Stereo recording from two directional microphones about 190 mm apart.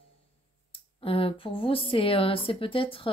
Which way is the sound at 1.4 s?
30° left (ahead or behind).